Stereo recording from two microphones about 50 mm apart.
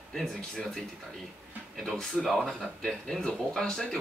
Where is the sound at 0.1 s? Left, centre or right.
Centre.